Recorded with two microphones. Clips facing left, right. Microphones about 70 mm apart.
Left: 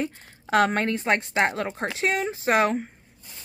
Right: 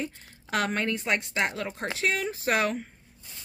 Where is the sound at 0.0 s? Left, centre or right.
Left.